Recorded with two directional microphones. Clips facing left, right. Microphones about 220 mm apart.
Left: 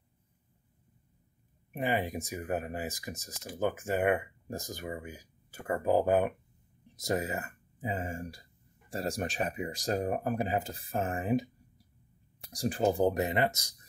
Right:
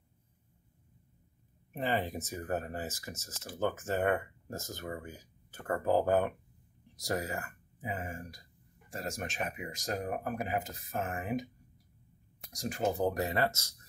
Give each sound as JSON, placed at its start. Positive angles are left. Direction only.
{"t": 1.7, "sound": "speech", "side_deg": 10}
{"t": 12.4, "sound": "speech", "side_deg": 35}